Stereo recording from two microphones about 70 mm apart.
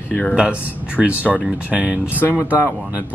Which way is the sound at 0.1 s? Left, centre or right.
Centre.